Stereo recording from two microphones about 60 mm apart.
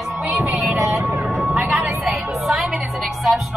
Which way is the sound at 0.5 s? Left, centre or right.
Centre.